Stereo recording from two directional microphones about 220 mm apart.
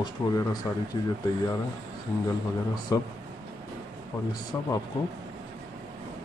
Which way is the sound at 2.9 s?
15° left (ahead or behind).